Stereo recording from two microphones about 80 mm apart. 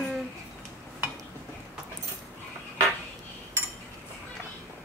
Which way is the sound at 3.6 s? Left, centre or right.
Right.